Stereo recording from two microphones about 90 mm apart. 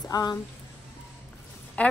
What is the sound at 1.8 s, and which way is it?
Speech, 15° left (ahead or behind).